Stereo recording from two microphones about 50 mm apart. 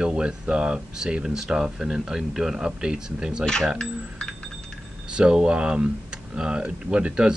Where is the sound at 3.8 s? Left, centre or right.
Centre.